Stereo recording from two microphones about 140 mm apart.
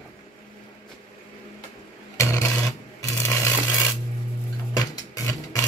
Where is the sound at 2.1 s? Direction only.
20° left (ahead or behind).